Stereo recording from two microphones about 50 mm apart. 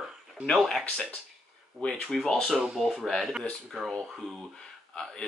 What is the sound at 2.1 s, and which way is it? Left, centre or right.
Speech, centre.